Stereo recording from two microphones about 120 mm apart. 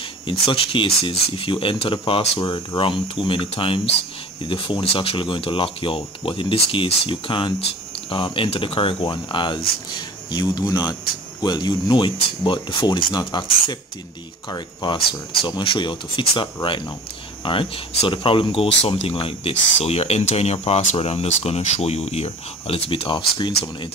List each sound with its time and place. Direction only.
0.3 s speech: 45° left (ahead or behind)
14.5 s speech: 40° left (ahead or behind)
17.5 s speech: 45° left (ahead or behind)